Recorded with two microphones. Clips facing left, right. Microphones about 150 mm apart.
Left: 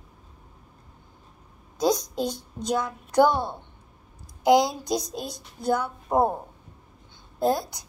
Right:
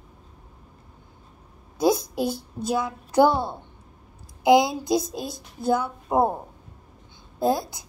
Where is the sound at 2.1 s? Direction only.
5° right (ahead or behind).